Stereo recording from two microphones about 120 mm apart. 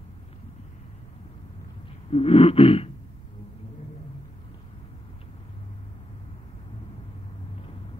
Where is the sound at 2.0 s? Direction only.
55° left (ahead or behind).